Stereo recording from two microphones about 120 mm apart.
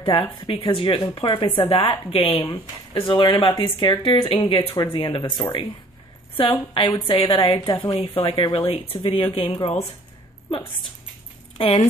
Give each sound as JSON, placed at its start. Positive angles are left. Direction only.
{"t": 0.0, "sound": "a woman's voice", "side_deg": 45}
{"t": 11.5, "sound": "speech", "side_deg": 55}